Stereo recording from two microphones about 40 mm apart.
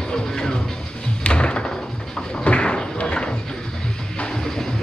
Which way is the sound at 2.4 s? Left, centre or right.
Left.